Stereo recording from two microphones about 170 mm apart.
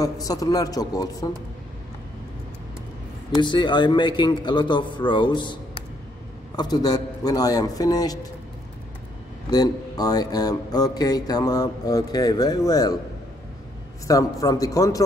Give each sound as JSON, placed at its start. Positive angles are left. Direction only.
{"t": 0.0, "sound": "speech", "side_deg": 20}
{"t": 3.3, "sound": "speech", "side_deg": 25}
{"t": 9.5, "sound": "speech", "side_deg": 20}
{"t": 14.0, "sound": "speech", "side_deg": 20}